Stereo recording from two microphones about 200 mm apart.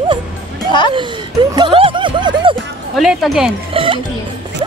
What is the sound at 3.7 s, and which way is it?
Speech, 25° right (ahead or behind).